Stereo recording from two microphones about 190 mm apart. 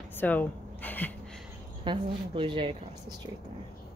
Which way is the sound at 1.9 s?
25° right (ahead or behind).